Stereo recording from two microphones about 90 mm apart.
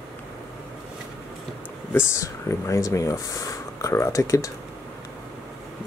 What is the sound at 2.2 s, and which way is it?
Speech, 35° left (ahead or behind).